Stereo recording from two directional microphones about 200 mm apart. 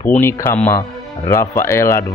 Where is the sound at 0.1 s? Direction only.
10° left (ahead or behind).